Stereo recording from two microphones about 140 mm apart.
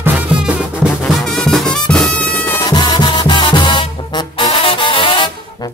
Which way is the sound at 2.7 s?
30° left (ahead or behind).